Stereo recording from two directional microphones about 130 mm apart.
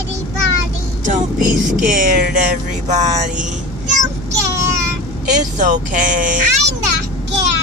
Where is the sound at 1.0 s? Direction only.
85° right; by 3.4 s 70° right (ahead or behind).